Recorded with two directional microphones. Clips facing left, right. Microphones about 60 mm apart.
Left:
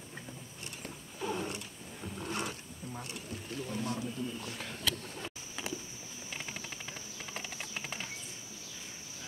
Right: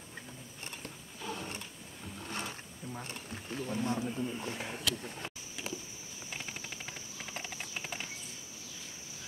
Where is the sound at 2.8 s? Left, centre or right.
Centre.